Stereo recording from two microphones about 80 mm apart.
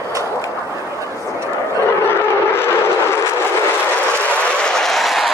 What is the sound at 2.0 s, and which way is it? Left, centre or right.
Vehicle, left.